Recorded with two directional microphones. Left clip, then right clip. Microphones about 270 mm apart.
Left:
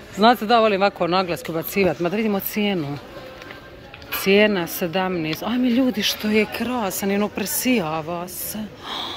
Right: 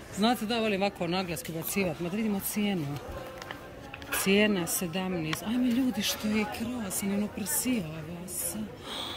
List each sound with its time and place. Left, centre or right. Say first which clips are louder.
0.2 s speech: left 13 dB; centre
4.2 s speech: left 9 dB; centre
8.8 s a sound: left 9 dB; centre